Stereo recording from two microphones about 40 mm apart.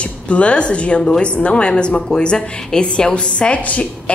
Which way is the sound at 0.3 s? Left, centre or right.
Left.